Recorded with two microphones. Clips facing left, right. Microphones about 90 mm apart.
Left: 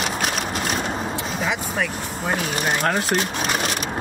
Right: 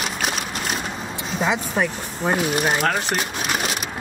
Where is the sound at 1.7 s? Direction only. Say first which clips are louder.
Right 2 dB; 20° right (ahead or behind).